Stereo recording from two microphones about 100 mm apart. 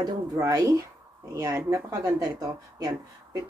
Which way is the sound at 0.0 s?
35° right (ahead or behind).